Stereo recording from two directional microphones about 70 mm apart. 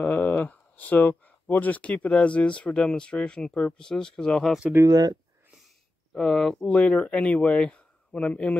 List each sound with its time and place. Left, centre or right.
0.0 s speech: left; by 4.6 s centre
4.8 s speech: right
6.1 s speech: centre
6.6 s speech: centre